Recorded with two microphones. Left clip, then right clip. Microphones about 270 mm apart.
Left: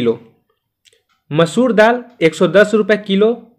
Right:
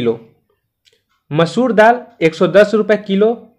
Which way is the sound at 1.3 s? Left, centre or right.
Centre.